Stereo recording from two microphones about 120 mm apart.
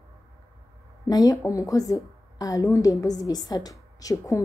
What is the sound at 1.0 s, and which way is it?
A woman's voice, 30° left (ahead or behind).